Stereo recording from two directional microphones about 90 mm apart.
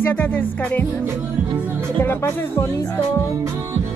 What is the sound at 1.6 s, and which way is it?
Music, 20° right (ahead or behind).